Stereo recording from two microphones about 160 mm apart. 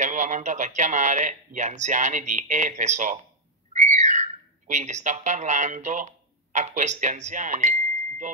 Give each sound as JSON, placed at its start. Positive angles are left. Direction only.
{"t": 0.0, "sound": "speech", "side_deg": -50}